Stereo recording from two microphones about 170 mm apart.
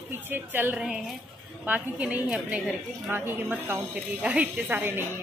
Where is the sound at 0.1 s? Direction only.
10° right (ahead or behind).